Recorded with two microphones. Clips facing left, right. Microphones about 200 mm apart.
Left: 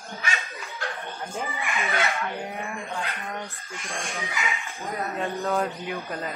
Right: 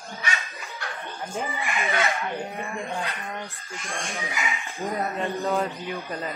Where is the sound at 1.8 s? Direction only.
15° right (ahead or behind).